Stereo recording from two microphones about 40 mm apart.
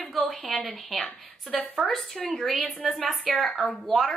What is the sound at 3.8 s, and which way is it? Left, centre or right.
Speech, centre.